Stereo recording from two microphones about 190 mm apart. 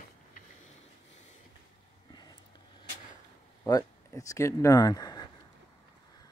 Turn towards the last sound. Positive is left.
turn(degrees=20)  # may be behind; listen again after turning